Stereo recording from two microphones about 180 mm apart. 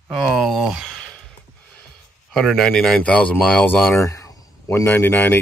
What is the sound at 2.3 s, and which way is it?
Speech, centre (ahead or behind).